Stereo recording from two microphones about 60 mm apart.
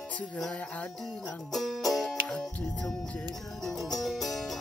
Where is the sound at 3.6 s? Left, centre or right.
Centre.